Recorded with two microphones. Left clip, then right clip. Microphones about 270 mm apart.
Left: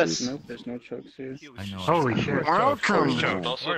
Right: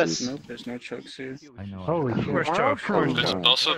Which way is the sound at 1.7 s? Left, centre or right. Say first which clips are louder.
Left 3 dB; left.